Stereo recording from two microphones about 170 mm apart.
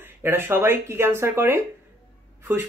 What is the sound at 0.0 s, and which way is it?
Speech, 15° right (ahead or behind).